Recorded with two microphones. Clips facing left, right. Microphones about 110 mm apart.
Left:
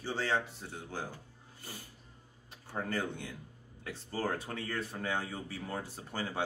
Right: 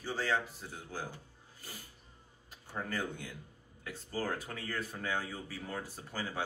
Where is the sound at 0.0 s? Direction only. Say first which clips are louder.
Left 1 dB; 25° left (ahead or behind).